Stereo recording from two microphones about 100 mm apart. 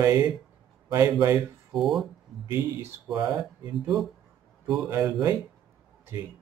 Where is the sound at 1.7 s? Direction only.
Centre (ahead or behind).